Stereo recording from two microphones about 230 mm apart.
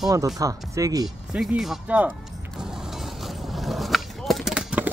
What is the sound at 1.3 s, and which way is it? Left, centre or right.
Speech, centre.